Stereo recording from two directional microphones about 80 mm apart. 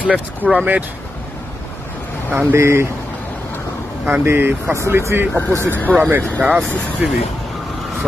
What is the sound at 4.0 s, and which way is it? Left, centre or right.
Speech, right.